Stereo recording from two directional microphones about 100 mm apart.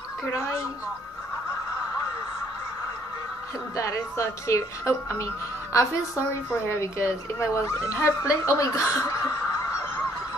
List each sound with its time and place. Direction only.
3.7 s speech: 30° left (ahead or behind)